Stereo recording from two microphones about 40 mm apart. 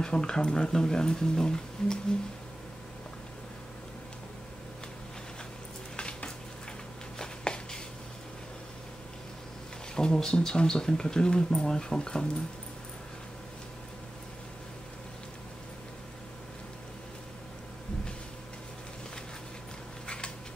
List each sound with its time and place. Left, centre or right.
0.0 s speech: centre
5.9 s a sound: left
9.9 s speech: centre